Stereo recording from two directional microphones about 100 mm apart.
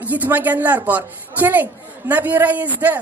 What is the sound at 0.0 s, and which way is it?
Speech, 15° right (ahead or behind).